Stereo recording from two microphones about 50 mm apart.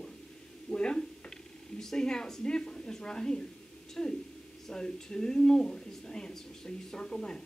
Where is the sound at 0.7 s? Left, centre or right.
Centre.